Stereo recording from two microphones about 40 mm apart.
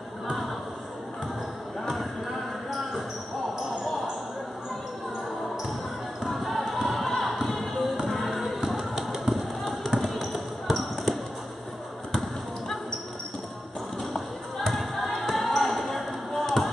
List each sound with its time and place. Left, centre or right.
6.2 s music: centre
8.6 s a sound: centre
9.3 s basketball bounce: centre
14.7 s basketball bounce: centre